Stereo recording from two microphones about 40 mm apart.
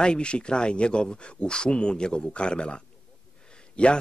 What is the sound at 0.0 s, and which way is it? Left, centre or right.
Speech, left.